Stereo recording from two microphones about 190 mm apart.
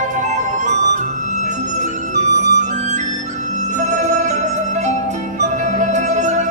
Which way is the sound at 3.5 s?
40° right (ahead or behind).